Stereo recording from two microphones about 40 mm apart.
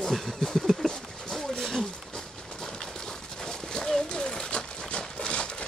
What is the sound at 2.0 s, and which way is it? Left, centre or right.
Clip-clop, centre.